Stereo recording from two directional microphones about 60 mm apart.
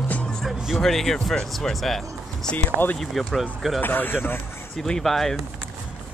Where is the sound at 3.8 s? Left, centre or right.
Left.